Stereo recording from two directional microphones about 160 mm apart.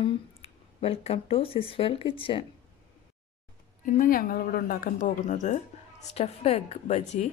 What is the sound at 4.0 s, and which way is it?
Speech, 60° left (ahead or behind).